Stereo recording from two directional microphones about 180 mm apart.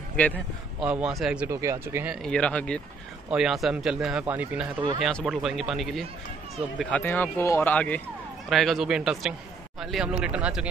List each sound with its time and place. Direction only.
0.3 s speech: 10° right (ahead or behind)
1.5 s speech: 15° right (ahead or behind)
2.2 s speech: 5° left (ahead or behind)